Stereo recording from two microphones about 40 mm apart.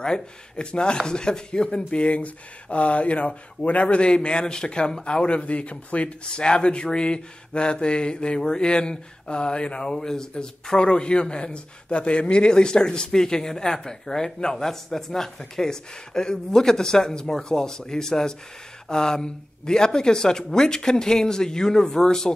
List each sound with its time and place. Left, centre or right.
0.0 s speech: left
6.2 s speech: left